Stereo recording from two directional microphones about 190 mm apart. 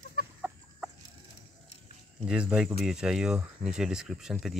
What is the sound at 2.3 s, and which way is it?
Speech, 5° right (ahead or behind).